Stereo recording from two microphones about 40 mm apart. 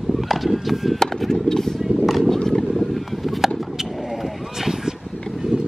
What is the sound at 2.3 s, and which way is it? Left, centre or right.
Vehicle, centre.